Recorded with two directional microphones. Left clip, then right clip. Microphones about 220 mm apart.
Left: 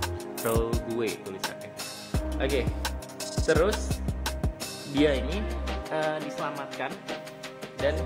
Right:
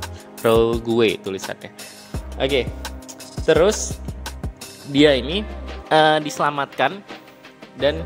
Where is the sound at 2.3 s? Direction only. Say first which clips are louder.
Right 9 dB; 25° right (ahead or behind).